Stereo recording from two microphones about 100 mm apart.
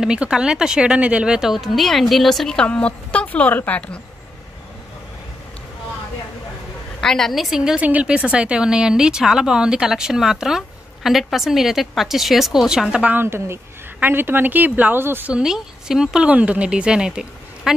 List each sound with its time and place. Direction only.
0.0 s a woman's voice: 10° right (ahead or behind); by 4.0 s 15° left (ahead or behind)
7.0 s a woman's voice: 5° left (ahead or behind); by 15.3 s 20° right (ahead or behind)
15.3 s a woman's voice: 5° right (ahead or behind)